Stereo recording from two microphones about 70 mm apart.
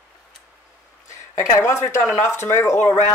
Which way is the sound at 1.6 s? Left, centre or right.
Left.